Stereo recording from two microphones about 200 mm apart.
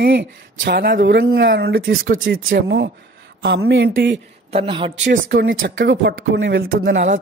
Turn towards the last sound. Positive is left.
turn(degrees=-45)  # may be behind; listen again after turning